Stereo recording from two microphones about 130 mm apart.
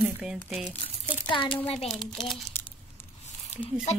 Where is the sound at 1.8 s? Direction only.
Centre (ahead or behind).